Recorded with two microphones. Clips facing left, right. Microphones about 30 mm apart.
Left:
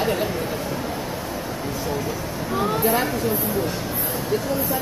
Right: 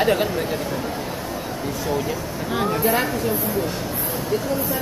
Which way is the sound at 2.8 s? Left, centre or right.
Centre.